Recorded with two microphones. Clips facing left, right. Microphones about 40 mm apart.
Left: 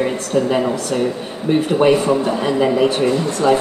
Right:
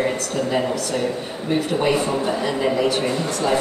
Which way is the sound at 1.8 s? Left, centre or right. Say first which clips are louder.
Left 6 dB; left.